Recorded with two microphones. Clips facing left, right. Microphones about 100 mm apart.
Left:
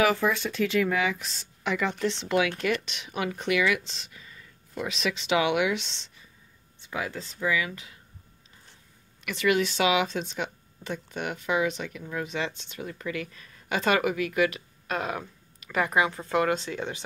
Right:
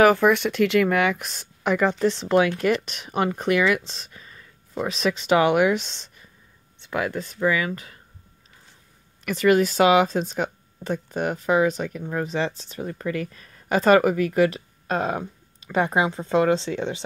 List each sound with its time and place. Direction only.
0.0 s speech: 60° right (ahead or behind)
6.8 s speech: 65° right (ahead or behind); by 7.9 s 45° right (ahead or behind)
9.2 s speech: 40° right (ahead or behind); by 17.0 s 25° right (ahead or behind)